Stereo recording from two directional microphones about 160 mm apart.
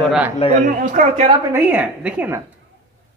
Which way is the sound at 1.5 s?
10° right (ahead or behind).